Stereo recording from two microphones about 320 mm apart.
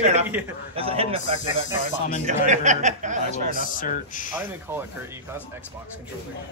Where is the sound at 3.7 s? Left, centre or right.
Left.